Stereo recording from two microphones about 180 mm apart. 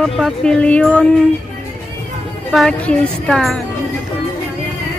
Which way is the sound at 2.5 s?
Centre (ahead or behind).